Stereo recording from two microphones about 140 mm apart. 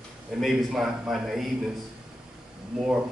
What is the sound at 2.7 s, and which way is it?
Speech, 5° right (ahead or behind).